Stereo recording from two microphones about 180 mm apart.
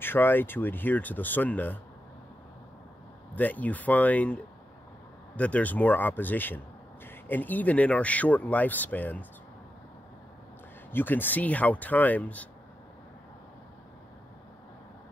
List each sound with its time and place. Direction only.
0.0 s speech: 10° left (ahead or behind)
3.3 s speech: 10° left (ahead or behind)
10.9 s speech: 10° left (ahead or behind)